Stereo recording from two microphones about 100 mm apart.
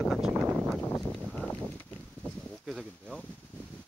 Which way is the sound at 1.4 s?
15° left (ahead or behind).